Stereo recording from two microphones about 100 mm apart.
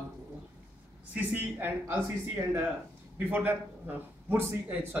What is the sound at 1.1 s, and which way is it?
A man's voice, 20° right (ahead or behind).